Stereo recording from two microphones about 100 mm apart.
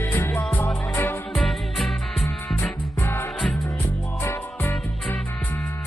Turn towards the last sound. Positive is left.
turn(degrees=25)  # may be behind; listen again after turning